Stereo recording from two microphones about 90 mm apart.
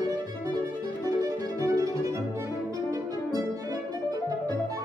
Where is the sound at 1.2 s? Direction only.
40° right (ahead or behind).